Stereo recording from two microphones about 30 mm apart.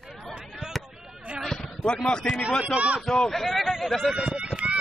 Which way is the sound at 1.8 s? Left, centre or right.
Left.